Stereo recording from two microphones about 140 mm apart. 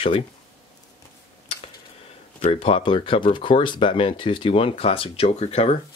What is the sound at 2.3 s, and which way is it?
Speech, 50° left (ahead or behind).